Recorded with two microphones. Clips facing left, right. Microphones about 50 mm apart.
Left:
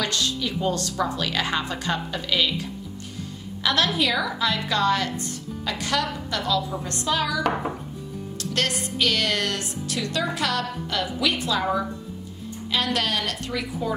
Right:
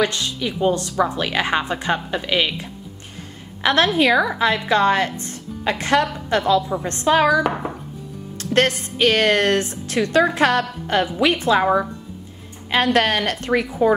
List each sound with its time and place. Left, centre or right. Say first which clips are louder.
0.0 s a woman's voice: right 5 dB; right
3.6 s a woman's voice: right 6 dB; right
7.4 s chopping: right 1 dB; centre
8.4 s music: right 8 dB; right
8.9 s a woman's voice: right 8 dB; right